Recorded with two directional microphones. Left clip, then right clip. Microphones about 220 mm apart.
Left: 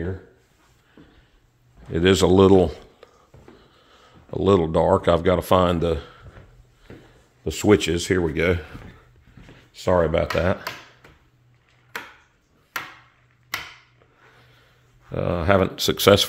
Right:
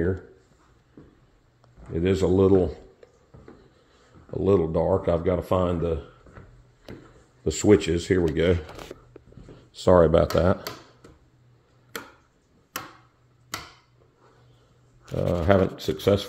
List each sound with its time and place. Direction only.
1.9 s a man's voice: 40° left (ahead or behind)
4.3 s speech: 35° left (ahead or behind)
7.4 s speech: 10° left (ahead or behind)
7.7 s speech: 20° left (ahead or behind)
9.8 s speech: 10° right (ahead or behind)
15.1 s speech: 20° left (ahead or behind)
15.8 s speech: 40° left (ahead or behind)